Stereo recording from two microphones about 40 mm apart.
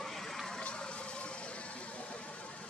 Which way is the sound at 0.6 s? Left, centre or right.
Left.